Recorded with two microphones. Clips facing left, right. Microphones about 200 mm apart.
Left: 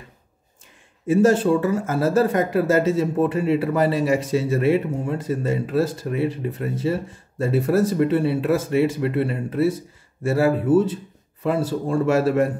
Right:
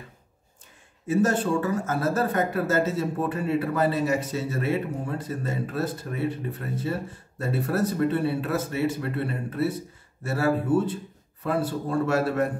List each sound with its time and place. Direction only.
1.0 s speech: 25° left (ahead or behind)